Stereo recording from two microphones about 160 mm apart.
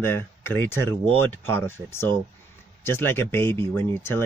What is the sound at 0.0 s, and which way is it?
Speech, 15° left (ahead or behind).